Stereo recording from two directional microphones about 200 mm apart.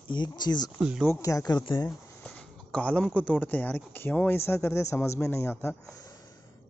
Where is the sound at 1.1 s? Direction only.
15° left (ahead or behind).